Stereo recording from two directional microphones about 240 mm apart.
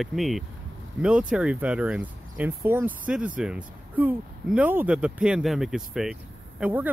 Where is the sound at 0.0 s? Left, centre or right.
Centre.